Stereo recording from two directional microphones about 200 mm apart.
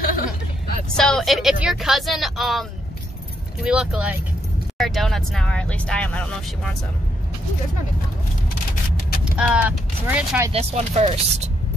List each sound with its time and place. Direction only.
0.9 s speech: 5° left (ahead or behind)
3.6 s speech: 5° right (ahead or behind)
9.2 s speech: 5° right (ahead or behind)
10.5 s speech: 30° right (ahead or behind)